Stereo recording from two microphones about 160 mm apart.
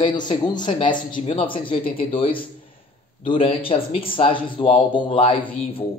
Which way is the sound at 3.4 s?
35° left (ahead or behind).